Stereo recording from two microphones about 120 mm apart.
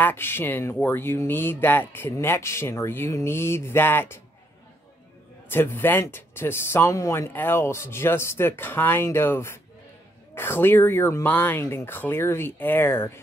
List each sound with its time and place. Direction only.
0.0 s speech: 20° left (ahead or behind)
5.5 s speech: 20° left (ahead or behind)